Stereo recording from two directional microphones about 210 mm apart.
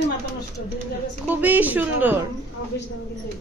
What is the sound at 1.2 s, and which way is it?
Speech, 10° right (ahead or behind).